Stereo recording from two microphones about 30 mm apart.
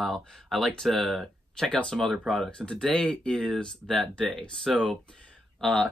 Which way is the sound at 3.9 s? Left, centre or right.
Centre.